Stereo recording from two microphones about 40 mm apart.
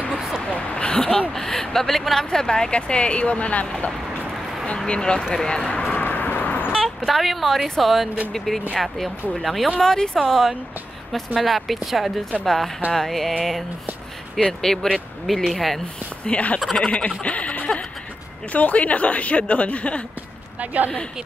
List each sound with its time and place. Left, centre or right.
0.1 s a sound: centre
0.4 s a sound: left
0.8 s speech: centre
2.7 s speech: left
4.8 s speech: left
5.2 s speech: centre
5.7 s a sound: left
5.9 s a sound: left
7.1 s a woman's voice: centre
9.8 s speech: centre
10.2 s a woman's voice: centre
14.4 s a woman's voice: centre
16.3 s speech: left
20.6 s speech: right